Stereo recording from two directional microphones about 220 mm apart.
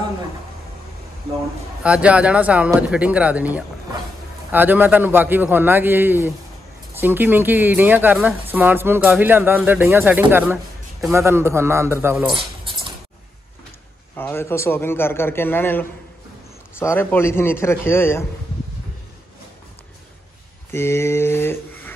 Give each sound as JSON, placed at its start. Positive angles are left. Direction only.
{"t": 1.8, "sound": "speech", "side_deg": -5}
{"t": 12.3, "sound": "keys jangling", "side_deg": -25}
{"t": 14.1, "sound": "a man's voice", "side_deg": 10}
{"t": 20.7, "sound": "a man's voice", "side_deg": 10}